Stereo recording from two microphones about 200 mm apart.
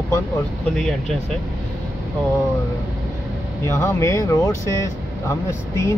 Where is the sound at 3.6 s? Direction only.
15° left (ahead or behind).